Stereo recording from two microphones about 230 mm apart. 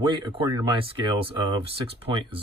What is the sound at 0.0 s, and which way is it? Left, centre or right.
Speech, centre.